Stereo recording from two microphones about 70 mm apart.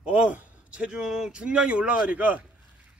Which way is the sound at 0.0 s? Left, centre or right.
Centre.